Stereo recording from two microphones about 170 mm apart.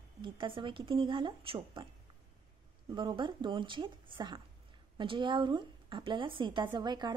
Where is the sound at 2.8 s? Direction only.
25° right (ahead or behind).